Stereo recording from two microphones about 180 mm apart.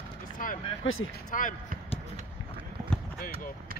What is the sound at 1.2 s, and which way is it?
Speech, 50° left (ahead or behind).